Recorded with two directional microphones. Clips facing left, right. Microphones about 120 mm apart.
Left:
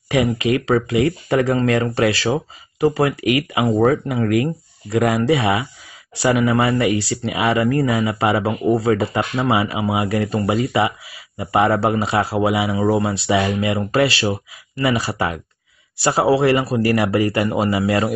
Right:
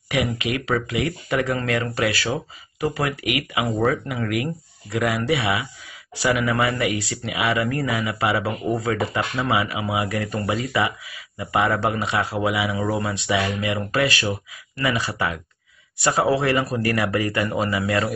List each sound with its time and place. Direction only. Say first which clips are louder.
0.1 s speech: left 6 dB; 35° left (ahead or behind)